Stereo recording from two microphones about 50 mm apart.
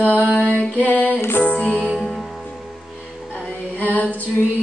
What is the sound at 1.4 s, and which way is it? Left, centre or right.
Music, left.